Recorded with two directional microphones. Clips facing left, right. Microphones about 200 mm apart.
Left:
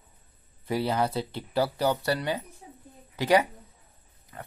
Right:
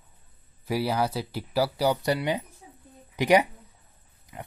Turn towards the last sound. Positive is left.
turn(degrees=-10)  # may be behind; listen again after turning